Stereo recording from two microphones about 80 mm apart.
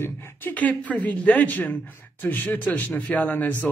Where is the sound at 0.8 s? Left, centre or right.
Centre.